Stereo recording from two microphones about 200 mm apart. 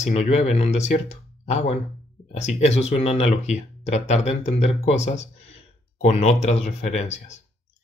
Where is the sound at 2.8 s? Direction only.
30° left (ahead or behind).